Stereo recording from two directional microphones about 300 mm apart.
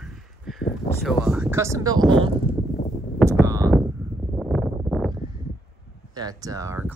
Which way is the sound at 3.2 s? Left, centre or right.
Centre.